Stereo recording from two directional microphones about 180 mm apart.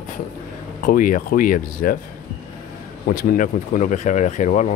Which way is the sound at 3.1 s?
50° left (ahead or behind).